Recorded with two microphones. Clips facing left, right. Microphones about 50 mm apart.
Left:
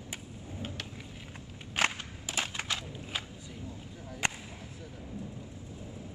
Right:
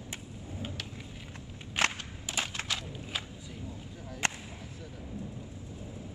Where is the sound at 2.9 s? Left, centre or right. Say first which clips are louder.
Right 1 dB; centre.